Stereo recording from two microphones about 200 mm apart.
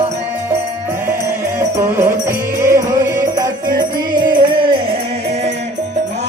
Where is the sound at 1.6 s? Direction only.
15° right (ahead or behind).